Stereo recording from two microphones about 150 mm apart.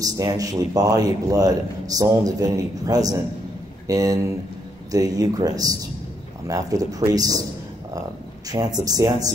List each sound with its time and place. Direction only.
0.0 s a man's voice: 25° right (ahead or behind)
8.5 s a man's voice: 25° right (ahead or behind)